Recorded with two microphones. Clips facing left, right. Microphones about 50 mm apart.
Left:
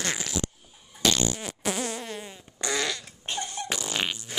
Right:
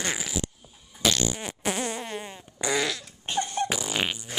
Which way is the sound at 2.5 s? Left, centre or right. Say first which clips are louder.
Right 2 dB; centre.